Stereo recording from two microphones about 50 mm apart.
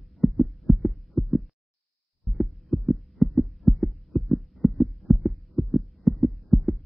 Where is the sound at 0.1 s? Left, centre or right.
Centre.